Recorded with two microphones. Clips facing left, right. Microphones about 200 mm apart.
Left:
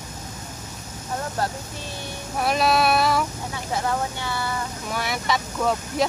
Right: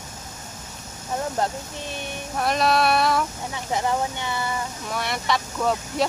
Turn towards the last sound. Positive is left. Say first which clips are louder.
# even
turn(degrees=0)  # may be behind; listen again after turning